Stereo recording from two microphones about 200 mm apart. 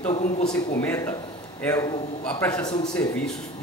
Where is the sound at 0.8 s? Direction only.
10° left (ahead or behind).